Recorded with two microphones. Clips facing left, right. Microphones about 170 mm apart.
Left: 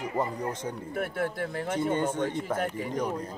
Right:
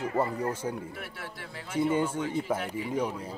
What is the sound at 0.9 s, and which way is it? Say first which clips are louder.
Speech: left 11 dB; 50° left (ahead or behind).